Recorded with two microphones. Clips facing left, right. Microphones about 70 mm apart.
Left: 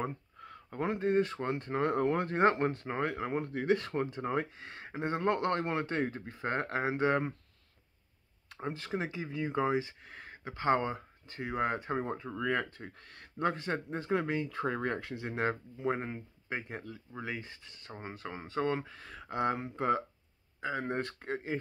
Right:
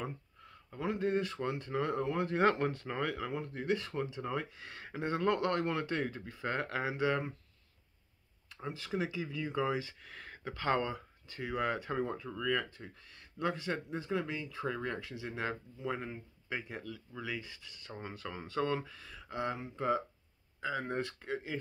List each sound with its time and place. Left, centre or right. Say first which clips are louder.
0.0 s a sound: left 5 dB; left
0.8 s speech: left 3 dB; left
2.4 s speech: left 3 dB; left
3.4 s speech: left 5 dB; left
8.5 s speech: left 1 dB; left
20.6 s speech: left 2 dB; centre
21.0 s speech: left 1 dB; left